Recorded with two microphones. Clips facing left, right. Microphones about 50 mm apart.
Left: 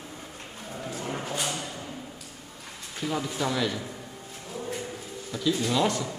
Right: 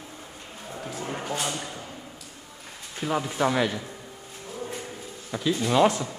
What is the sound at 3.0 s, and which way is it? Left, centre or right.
Speech, right.